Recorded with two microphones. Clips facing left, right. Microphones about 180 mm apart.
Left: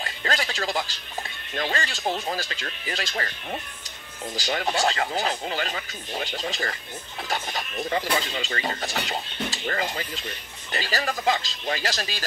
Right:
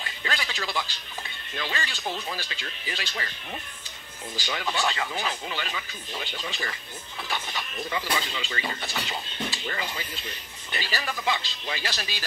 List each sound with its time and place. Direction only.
0.0 s a sound: 40° left (ahead or behind)
1.5 s speech: 45° left (ahead or behind)
4.4 s speech: 40° left (ahead or behind)